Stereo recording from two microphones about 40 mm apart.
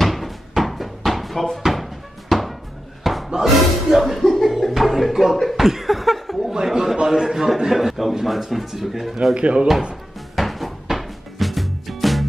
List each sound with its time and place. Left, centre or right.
0.0 s cupboard open or close: centre
1.7 s music: centre
3.0 s wood: centre
3.9 s a sound: centre
5.7 s laughter: centre
6.5 s a sound: centre
9.3 s speech: right
10.3 s music: centre